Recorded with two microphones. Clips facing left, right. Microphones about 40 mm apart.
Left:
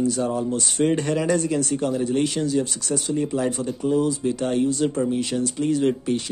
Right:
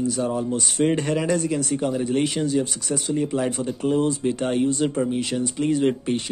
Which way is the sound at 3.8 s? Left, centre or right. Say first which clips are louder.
Even; right.